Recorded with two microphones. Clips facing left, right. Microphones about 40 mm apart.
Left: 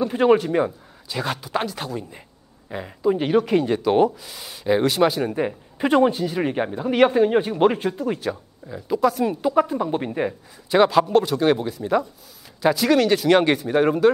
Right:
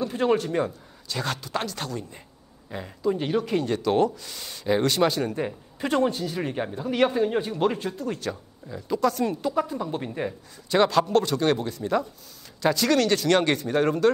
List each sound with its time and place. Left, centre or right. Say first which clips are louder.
0.0 s speech: left 6 dB; centre